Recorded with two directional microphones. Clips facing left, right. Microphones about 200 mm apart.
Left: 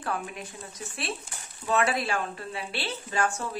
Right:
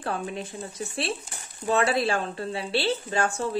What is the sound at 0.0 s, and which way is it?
A woman's voice, 30° right (ahead or behind).